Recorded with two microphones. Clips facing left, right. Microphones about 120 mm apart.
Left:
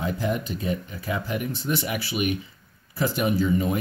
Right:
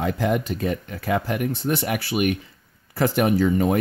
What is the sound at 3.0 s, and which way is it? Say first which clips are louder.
Speech: right 4 dB; 70° right (ahead or behind).